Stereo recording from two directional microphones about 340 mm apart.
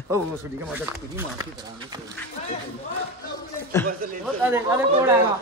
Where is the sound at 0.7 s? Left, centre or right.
Centre.